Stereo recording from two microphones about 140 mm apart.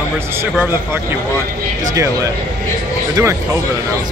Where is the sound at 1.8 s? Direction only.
20° right (ahead or behind).